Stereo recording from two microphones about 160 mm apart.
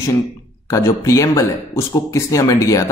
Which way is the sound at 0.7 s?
20° left (ahead or behind).